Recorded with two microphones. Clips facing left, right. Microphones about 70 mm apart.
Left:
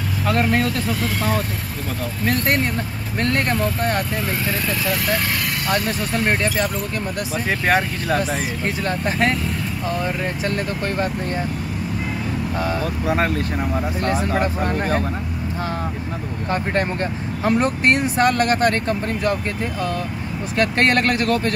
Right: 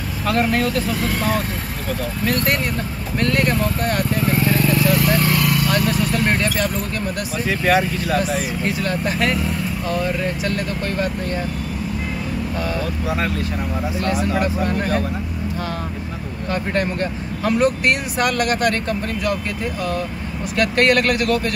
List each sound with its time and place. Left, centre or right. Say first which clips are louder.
0.3 s speech: right 1 dB; left
2.2 s speech: left 1 dB; left
6.4 s speech: even; left
13.9 s speech: right 2 dB; left
16.4 s speech: even; left
20.5 s speech: right 1 dB; left